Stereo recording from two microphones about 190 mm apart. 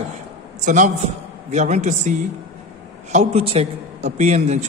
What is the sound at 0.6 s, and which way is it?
A man's voice, 40° right (ahead or behind).